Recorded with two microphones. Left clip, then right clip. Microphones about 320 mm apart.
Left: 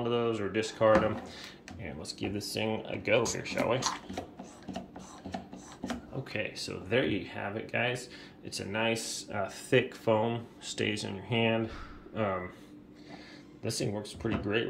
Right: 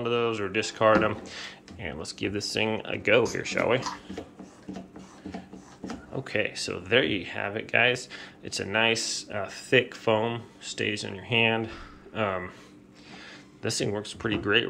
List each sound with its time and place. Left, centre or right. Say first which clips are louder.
0.0 s speech: right 4 dB; centre
6.2 s speech: right 8 dB; centre
13.6 s speech: right 5 dB; centre